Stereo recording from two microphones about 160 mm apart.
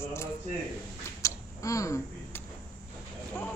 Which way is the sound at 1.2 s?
20° left (ahead or behind).